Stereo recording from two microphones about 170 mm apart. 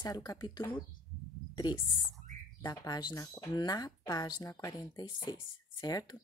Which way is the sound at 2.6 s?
20° left (ahead or behind).